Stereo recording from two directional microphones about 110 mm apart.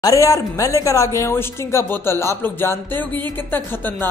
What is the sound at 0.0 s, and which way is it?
A woman's voice, 30° left (ahead or behind).